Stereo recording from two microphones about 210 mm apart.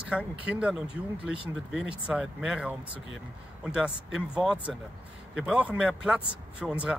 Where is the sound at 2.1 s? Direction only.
5° right (ahead or behind).